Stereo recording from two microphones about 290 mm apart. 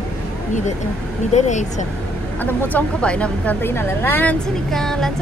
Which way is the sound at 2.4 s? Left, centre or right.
Centre.